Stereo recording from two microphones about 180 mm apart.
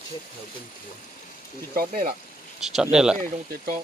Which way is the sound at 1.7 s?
55° right (ahead or behind).